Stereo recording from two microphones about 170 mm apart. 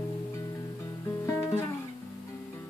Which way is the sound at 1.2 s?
15° left (ahead or behind).